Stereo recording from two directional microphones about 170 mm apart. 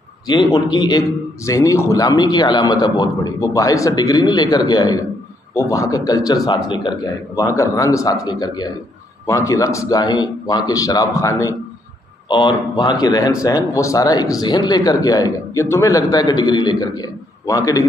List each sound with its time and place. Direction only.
0.3 s a man's voice: 25° left (ahead or behind)